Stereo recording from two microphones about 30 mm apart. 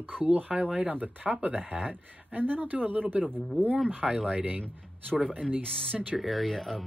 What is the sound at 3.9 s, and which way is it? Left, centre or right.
Speech, right.